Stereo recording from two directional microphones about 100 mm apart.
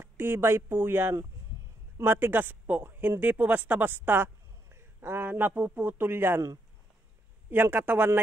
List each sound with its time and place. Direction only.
0.0 s speech: 25° right (ahead or behind)